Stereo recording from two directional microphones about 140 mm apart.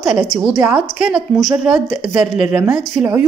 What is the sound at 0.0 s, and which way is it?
A woman's voice, centre (ahead or behind).